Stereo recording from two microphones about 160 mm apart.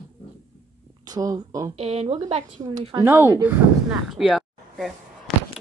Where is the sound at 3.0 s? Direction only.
15° right (ahead or behind).